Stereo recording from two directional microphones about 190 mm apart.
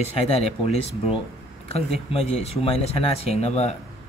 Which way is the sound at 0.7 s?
35° left (ahead or behind).